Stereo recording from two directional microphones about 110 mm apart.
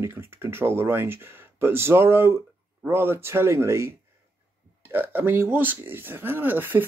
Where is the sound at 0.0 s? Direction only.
20° right (ahead or behind).